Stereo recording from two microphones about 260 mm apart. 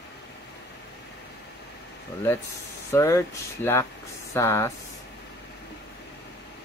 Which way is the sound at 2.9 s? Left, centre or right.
Centre.